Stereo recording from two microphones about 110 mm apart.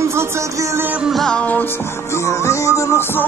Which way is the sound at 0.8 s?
10° right (ahead or behind).